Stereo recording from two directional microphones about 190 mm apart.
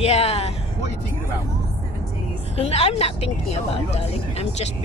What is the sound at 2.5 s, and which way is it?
Speech, 35° left (ahead or behind).